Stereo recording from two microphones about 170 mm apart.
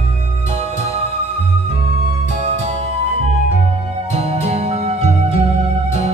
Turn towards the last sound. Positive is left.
turn(degrees=-35)  # may be behind; listen again after turning